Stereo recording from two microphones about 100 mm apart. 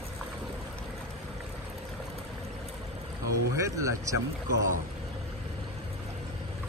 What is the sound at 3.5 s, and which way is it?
Speech, 30° right (ahead or behind).